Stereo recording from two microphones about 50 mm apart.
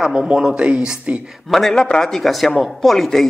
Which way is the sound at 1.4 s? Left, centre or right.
Centre.